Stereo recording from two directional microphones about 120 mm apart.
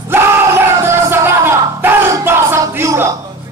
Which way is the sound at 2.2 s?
20° right (ahead or behind).